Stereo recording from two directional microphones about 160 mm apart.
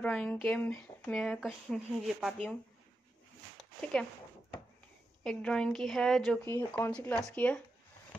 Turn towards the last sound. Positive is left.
turn(degrees=5)  # may be behind; listen again after turning